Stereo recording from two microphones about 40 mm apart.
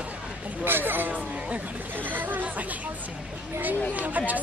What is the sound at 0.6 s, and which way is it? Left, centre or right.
Speech, right.